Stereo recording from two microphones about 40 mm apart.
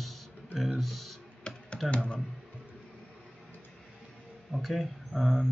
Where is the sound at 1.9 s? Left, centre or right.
Left.